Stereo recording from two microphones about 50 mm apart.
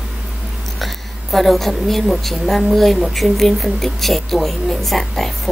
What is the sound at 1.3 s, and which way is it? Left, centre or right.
A woman's voice, centre.